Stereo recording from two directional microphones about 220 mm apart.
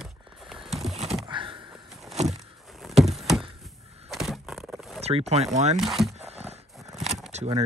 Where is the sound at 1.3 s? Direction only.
20° right (ahead or behind).